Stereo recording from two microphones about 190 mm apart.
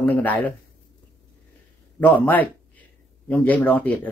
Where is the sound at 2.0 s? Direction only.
10° left (ahead or behind).